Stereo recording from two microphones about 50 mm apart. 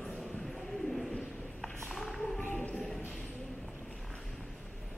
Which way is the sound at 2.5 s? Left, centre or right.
Left.